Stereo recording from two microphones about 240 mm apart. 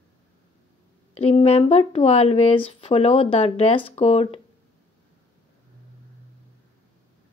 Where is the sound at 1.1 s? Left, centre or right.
Left.